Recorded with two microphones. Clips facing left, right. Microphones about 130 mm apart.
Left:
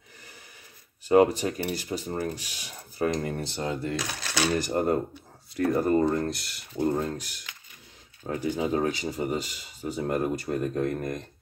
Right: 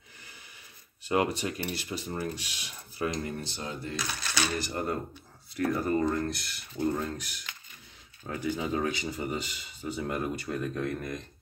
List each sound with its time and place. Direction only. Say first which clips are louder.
1.0 s speech: left 8 dB; 40° left (ahead or behind); by 4.5 s 90° left
4.6 s speech: left 7 dB; 45° left (ahead or behind)
8.3 s speech: left 4 dB; 40° left (ahead or behind)